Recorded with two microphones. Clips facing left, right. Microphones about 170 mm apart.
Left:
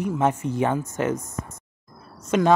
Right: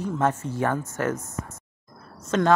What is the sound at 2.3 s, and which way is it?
Speech, 15° left (ahead or behind).